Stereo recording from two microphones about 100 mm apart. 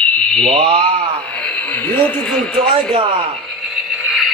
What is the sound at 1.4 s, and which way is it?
Speech, 15° left (ahead or behind).